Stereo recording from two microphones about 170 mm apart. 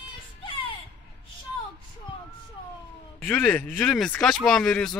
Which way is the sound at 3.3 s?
10° left (ahead or behind).